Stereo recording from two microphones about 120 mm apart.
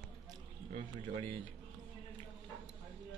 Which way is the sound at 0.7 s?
50° right (ahead or behind).